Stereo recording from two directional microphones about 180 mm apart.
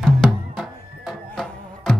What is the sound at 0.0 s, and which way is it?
Music, centre (ahead or behind).